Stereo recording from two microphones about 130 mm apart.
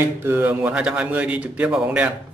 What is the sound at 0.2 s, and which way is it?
A man's voice, 15° right (ahead or behind).